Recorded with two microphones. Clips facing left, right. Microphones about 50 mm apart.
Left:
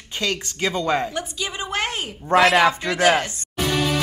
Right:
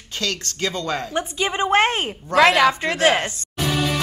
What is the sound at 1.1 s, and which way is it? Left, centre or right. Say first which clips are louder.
Speech: right 5 dB; right.